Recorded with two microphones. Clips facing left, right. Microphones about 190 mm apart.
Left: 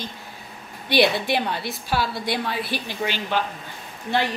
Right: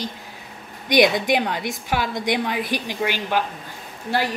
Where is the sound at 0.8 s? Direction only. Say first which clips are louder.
Right 3 dB; 15° right (ahead or behind).